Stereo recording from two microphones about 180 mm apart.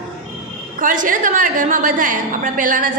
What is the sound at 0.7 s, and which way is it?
A woman's voice, 50° right (ahead or behind).